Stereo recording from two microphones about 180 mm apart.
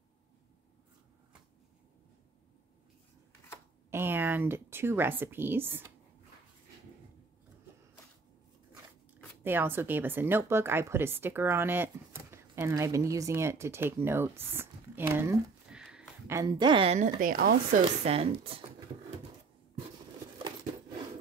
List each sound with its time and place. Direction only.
3.9 s a woman's voice: 10° right (ahead or behind)
9.4 s speech: 10° right (ahead or behind)
16.3 s a woman's voice: 20° right (ahead or behind); by 17.6 s 55° right (ahead or behind)
18.0 s a woman's voice: 35° right (ahead or behind)